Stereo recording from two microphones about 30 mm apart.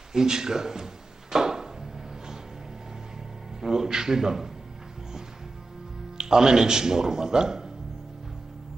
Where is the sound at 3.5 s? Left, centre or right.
Centre.